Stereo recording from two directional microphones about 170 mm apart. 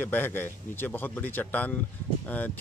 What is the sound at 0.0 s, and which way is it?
Speech, 10° left (ahead or behind).